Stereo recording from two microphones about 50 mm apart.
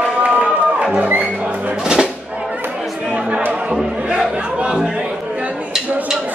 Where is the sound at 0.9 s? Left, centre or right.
Right.